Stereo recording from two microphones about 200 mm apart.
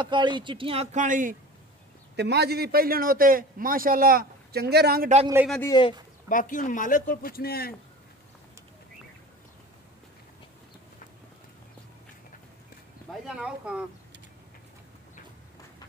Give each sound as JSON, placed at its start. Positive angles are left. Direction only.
{"t": 0.0, "sound": "speech", "side_deg": -25}
{"t": 2.1, "sound": "a man's voice", "side_deg": -55}
{"t": 5.7, "sound": "speech", "side_deg": 25}
{"t": 6.2, "sound": "a man's voice", "side_deg": 40}
{"t": 13.1, "sound": "speech", "side_deg": -5}